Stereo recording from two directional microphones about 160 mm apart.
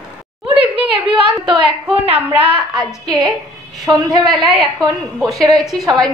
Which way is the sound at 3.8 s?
30° right (ahead or behind).